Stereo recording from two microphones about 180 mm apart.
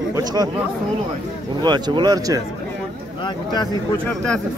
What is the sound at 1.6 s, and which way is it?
Speech, 25° right (ahead or behind).